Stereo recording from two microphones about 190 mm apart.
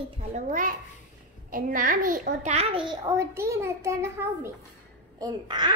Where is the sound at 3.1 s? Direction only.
15° right (ahead or behind).